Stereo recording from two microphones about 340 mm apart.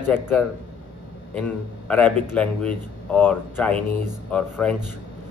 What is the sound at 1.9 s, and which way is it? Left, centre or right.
A man's voice, centre.